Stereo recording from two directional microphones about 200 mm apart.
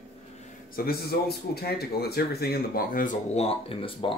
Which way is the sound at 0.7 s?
50° left (ahead or behind).